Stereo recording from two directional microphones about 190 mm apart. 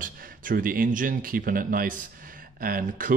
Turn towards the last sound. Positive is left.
turn(degrees=-50)  # may be behind; listen again after turning